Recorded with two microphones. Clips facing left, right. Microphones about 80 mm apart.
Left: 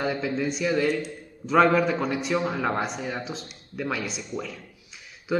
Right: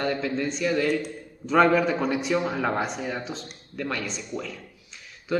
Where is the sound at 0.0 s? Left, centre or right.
Centre.